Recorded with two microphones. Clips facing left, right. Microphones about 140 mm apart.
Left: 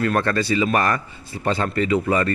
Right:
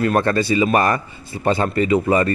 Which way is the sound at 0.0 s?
20° right (ahead or behind).